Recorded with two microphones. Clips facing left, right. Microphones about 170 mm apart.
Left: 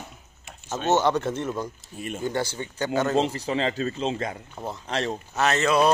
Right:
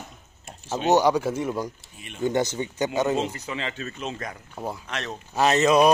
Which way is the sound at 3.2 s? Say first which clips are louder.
Left 5 dB; 35° left (ahead or behind).